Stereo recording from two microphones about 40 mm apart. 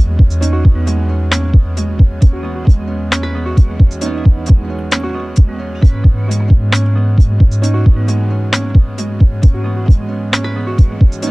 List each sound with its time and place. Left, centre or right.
0.2 s music: centre